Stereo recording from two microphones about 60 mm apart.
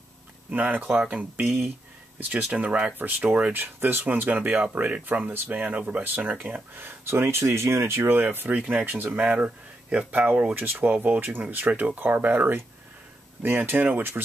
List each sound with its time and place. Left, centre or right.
0.5 s speech: right
2.1 s speech: right
3.5 s speech: right
8.8 s speech: right